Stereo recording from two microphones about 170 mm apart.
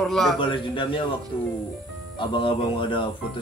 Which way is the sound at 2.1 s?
30° left (ahead or behind).